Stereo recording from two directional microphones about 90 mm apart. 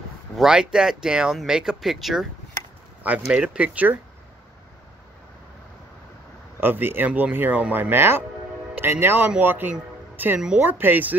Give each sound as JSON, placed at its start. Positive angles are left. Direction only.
{"t": 0.4, "sound": "speech", "side_deg": -10}
{"t": 3.3, "sound": "speech", "side_deg": -15}
{"t": 6.6, "sound": "speech", "side_deg": -25}